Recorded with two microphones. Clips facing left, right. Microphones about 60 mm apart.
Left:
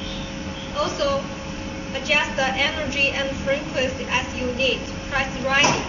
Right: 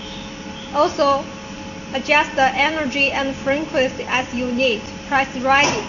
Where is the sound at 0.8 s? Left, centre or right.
Right.